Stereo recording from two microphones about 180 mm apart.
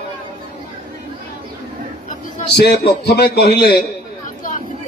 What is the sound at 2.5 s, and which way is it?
A man's voice, 70° left (ahead or behind).